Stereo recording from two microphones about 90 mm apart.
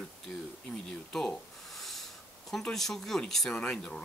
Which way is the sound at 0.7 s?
5° left (ahead or behind).